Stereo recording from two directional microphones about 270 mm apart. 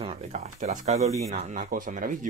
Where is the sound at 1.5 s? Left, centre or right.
Right.